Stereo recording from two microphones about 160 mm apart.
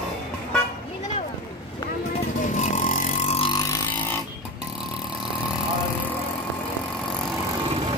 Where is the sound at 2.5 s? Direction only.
50° left (ahead or behind).